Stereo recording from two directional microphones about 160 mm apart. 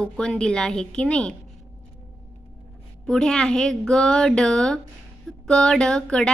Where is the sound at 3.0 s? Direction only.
5° left (ahead or behind).